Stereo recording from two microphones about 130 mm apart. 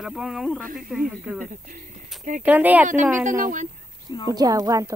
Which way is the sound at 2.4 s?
10° right (ahead or behind).